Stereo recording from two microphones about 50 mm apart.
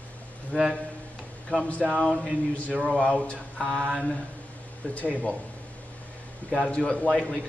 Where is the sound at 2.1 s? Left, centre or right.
Centre.